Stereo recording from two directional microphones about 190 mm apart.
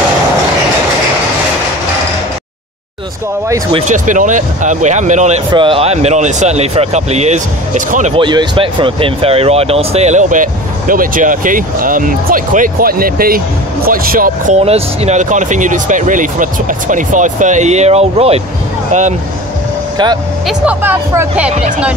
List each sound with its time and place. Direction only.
3.8 s speech: 40° right (ahead or behind)
5.5 s speech: 25° right (ahead or behind)
8.2 s speech: 25° right (ahead or behind)
20.4 s speech: 10° right (ahead or behind)
21.5 s speech: 35° right (ahead or behind)